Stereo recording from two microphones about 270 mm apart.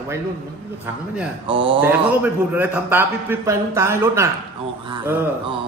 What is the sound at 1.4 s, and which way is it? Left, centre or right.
Speech, centre.